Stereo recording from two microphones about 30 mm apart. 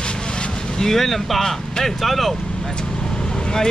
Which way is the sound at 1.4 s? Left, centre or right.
Centre.